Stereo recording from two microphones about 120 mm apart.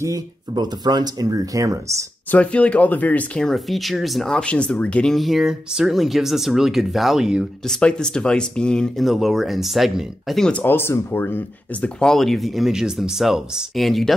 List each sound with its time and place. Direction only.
0.0 s speech: 30° right (ahead or behind)
2.3 s speech: 10° left (ahead or behind)
10.6 s speech: 20° left (ahead or behind); by 14.1 s centre (ahead or behind)